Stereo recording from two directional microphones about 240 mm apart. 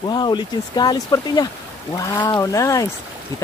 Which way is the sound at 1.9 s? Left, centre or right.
Centre.